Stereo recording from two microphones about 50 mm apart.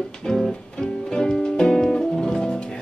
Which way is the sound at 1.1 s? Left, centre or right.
Centre.